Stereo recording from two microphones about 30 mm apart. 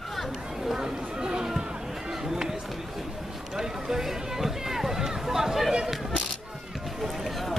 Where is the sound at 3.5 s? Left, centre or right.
Centre.